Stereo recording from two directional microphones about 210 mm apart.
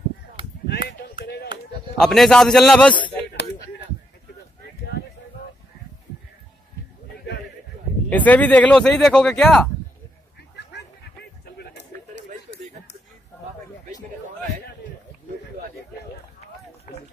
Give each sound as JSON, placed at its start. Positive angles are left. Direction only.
{"t": 0.7, "sound": "a sound", "side_deg": 50}
{"t": 1.2, "sound": "chop", "side_deg": 50}
{"t": 2.0, "sound": "speech", "side_deg": 0}
{"t": 8.1, "sound": "speech", "side_deg": 5}